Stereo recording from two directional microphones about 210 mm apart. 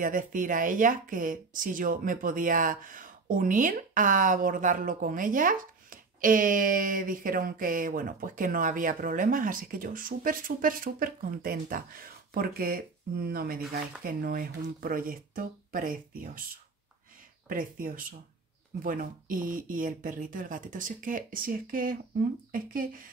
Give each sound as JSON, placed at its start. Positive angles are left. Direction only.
{"t": 0.0, "sound": "speech", "side_deg": -40}
{"t": 17.5, "sound": "speech", "side_deg": -40}